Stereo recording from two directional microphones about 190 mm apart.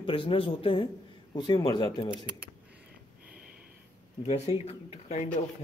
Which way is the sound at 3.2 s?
50° right (ahead or behind).